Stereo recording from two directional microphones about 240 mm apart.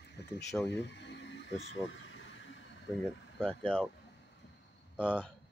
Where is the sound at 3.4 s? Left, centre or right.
Centre.